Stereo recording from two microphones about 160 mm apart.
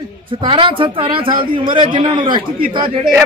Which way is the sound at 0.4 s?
30° right (ahead or behind).